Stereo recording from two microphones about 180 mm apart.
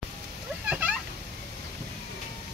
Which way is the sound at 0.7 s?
10° right (ahead or behind).